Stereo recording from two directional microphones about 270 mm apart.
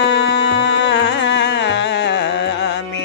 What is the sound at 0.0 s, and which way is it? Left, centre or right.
Music, left.